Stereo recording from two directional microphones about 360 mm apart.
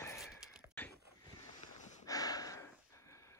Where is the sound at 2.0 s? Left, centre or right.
Centre.